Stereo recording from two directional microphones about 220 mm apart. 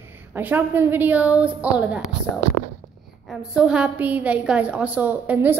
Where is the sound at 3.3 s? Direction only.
5° right (ahead or behind).